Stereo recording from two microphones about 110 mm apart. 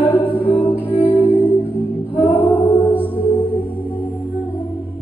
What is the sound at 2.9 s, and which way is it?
Music, 15° right (ahead or behind).